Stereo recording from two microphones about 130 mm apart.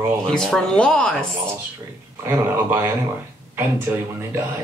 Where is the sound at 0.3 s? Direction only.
5° left (ahead or behind).